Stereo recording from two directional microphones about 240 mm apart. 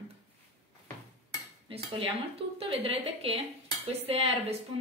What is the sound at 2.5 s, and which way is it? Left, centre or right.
Speech, right.